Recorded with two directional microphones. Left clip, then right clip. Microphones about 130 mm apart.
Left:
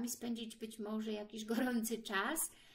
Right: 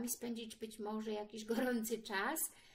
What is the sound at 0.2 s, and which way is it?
A woman's voice, 35° left (ahead or behind).